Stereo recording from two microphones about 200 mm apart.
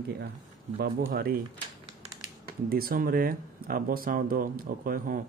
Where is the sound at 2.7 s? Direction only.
45° right (ahead or behind).